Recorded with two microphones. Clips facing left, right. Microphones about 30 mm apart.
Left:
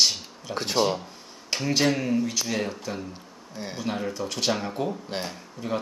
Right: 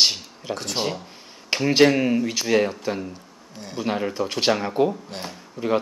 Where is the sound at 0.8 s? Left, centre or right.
Centre.